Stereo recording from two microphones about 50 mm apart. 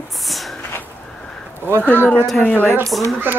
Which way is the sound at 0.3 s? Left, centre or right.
Centre.